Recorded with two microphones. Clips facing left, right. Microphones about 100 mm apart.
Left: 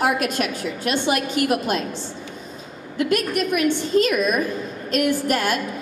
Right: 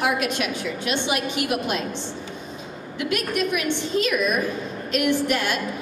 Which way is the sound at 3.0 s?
45° left (ahead or behind).